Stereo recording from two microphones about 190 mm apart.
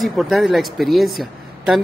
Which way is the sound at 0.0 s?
Centre (ahead or behind).